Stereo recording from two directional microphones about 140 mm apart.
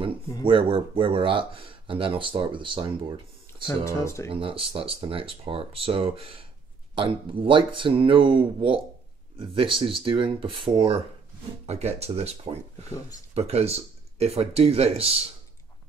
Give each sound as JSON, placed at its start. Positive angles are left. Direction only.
{"t": 0.4, "sound": "speech", "side_deg": -40}
{"t": 3.8, "sound": "speech", "side_deg": 20}
{"t": 4.3, "sound": "speech", "side_deg": -40}
{"t": 11.6, "sound": "speech", "side_deg": -50}